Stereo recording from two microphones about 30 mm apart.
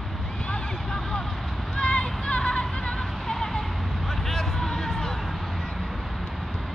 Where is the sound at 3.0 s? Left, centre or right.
Centre.